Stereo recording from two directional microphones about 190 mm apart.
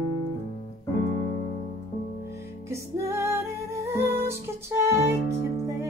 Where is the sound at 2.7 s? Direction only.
15° right (ahead or behind).